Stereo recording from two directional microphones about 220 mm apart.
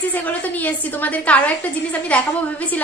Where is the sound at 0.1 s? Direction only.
10° left (ahead or behind).